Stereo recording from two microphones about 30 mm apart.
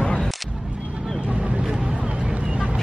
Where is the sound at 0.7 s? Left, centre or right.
Right.